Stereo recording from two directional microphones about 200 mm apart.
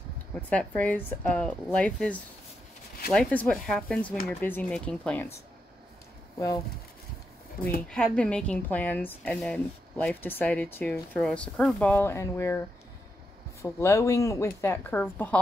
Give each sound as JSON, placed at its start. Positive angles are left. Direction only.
{"t": 0.5, "sound": "a woman's voice", "side_deg": 5}
{"t": 7.9, "sound": "a woman's voice", "side_deg": 5}